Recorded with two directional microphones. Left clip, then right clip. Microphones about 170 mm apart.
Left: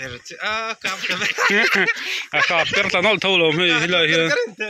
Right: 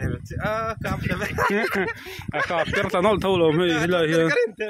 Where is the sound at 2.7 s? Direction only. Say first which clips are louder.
Left 3 dB; 35° right (ahead or behind).